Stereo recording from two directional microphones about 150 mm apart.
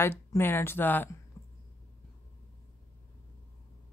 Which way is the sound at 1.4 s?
15° left (ahead or behind).